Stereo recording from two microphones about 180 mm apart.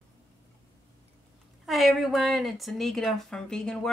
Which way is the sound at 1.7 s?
Centre (ahead or behind).